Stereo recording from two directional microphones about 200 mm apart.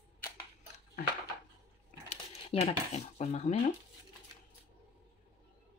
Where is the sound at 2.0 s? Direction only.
35° left (ahead or behind).